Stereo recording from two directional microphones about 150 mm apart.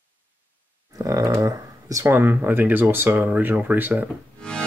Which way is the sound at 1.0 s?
25° right (ahead or behind).